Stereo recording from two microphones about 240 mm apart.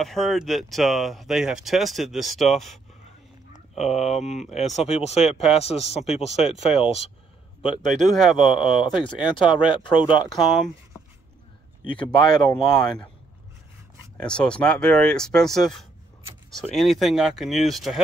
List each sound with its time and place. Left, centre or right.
0.0 s speech: centre
4.6 s speech: left
7.8 s speech: centre
8.9 s speech: centre
10.4 s speech: centre
12.0 s speech: centre
12.7 s speech: centre
14.1 s speech: centre
16.7 s speech: centre